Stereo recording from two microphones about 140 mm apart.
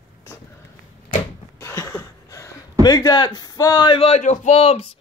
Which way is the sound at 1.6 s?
20° left (ahead or behind).